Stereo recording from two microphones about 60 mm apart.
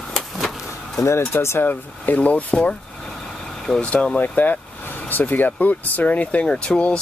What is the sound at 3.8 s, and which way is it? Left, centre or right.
Speech, centre.